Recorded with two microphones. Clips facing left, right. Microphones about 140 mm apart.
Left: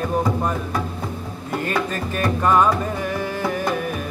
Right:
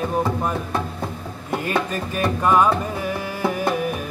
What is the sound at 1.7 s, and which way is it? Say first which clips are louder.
Music: right 1 dB; 10° right (ahead or behind).